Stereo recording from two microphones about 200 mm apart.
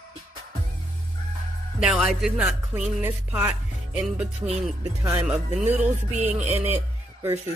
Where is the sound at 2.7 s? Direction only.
10° right (ahead or behind).